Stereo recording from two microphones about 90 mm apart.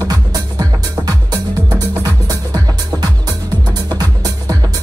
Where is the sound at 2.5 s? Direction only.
45° right (ahead or behind).